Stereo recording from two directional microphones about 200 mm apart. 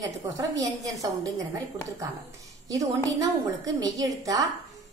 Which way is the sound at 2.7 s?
15° right (ahead or behind).